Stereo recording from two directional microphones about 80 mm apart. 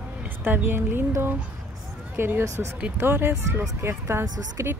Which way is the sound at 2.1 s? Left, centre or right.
Right.